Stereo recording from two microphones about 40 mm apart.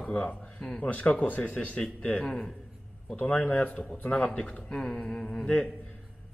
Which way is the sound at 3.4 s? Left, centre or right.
Left.